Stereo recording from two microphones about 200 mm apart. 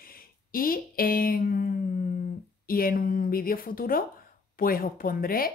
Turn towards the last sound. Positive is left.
turn(degrees=45)  # may be behind; listen again after turning